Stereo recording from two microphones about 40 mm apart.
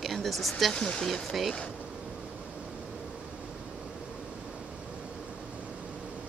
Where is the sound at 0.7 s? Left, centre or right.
Left.